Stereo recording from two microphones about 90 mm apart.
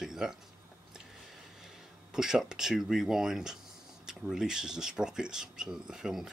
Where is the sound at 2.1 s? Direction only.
5° right (ahead or behind).